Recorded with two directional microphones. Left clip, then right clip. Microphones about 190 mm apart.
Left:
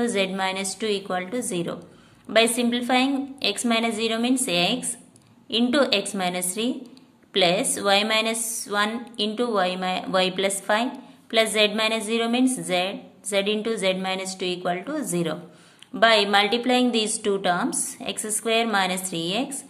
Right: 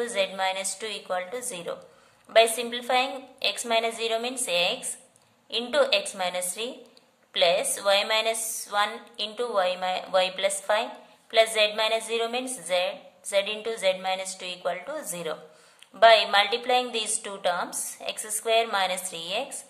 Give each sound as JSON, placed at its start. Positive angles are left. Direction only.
{"t": 0.0, "sound": "a woman's voice", "side_deg": 15}